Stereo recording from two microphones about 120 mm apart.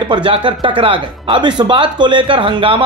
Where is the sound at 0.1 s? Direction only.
40° right (ahead or behind).